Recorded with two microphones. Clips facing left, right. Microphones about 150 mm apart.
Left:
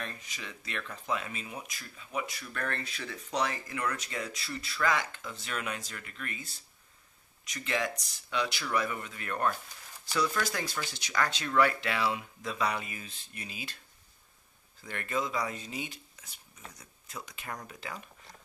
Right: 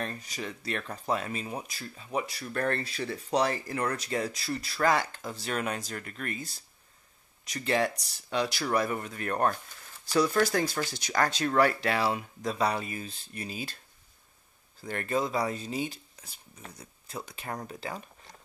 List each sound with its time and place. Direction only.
0.0 s speech: 40° right (ahead or behind)
14.8 s speech: 35° right (ahead or behind)